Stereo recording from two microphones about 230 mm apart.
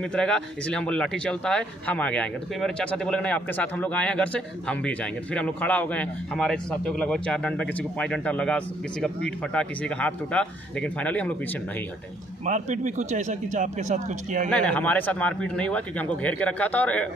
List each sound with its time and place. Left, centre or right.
0.1 s speech: centre
12.4 s speech: right
14.5 s speech: centre